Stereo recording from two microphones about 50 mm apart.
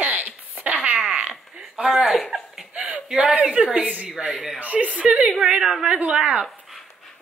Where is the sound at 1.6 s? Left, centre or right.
Centre.